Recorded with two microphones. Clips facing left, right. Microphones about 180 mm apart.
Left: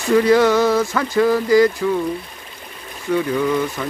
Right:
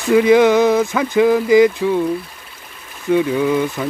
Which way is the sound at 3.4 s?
15° right (ahead or behind).